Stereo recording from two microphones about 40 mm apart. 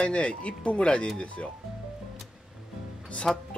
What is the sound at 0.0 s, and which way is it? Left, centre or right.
Speech, left.